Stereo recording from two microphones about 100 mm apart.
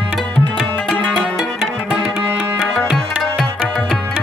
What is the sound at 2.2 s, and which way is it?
Music, 20° right (ahead or behind).